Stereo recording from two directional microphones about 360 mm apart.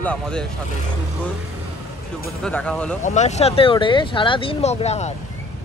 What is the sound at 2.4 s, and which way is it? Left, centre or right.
Speech, centre.